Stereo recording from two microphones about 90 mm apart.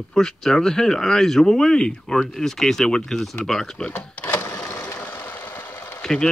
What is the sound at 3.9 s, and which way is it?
Sewing machine, 15° left (ahead or behind).